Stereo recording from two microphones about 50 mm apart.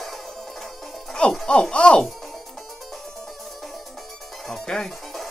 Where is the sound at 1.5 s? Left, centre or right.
Centre.